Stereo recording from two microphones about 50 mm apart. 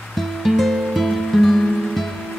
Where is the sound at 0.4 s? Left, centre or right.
Centre.